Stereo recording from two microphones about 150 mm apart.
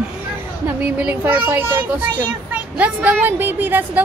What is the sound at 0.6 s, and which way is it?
A woman's voice, 10° right (ahead or behind).